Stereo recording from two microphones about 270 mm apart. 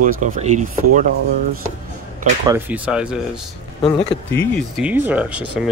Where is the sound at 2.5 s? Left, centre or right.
Centre.